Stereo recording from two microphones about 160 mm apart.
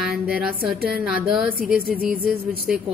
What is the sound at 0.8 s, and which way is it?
Speech, 70° right (ahead or behind).